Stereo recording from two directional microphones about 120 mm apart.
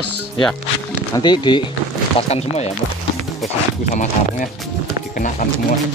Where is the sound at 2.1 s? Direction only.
60° left (ahead or behind).